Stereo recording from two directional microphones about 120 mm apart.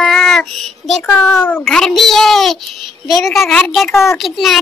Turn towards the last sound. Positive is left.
turn(degrees=0)  # may be behind; listen again after turning